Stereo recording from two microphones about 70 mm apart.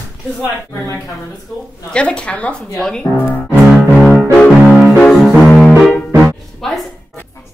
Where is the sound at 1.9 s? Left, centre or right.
Centre.